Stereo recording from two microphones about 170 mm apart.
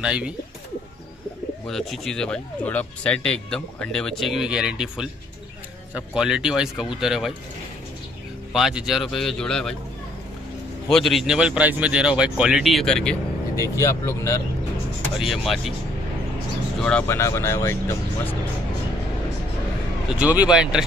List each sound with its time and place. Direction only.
0.0 s speech: 5° right (ahead or behind)
1.7 s speech: centre (ahead or behind)
8.5 s speech: centre (ahead or behind)
10.9 s speech: centre (ahead or behind)
13.6 s speech: 15° left (ahead or behind)
15.1 s speech: centre (ahead or behind)
16.8 s speech: 10° left (ahead or behind)
20.2 s speech: 10° right (ahead or behind)